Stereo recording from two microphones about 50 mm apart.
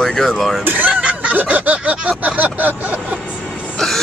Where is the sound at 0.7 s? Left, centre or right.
Right.